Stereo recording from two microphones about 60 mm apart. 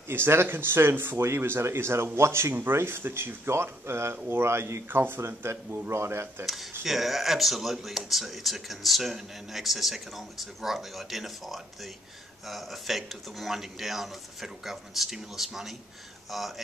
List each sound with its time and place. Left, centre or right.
0.1 s speech: right
6.4 s speech: centre